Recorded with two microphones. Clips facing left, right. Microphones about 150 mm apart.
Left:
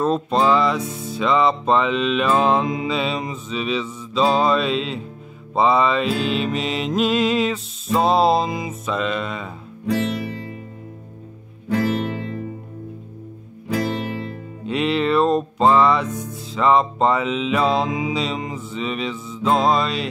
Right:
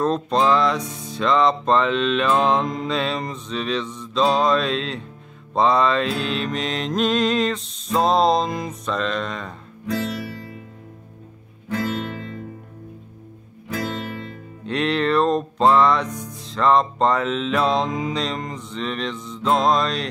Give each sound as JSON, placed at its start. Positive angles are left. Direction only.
{"t": 0.0, "sound": "music", "side_deg": 5}
{"t": 11.7, "sound": "music", "side_deg": 30}
{"t": 14.7, "sound": "music", "side_deg": 5}